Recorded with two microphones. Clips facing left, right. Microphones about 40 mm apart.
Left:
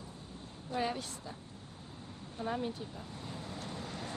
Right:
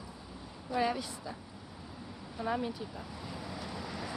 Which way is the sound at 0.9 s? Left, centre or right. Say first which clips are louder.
Right 3 dB; centre.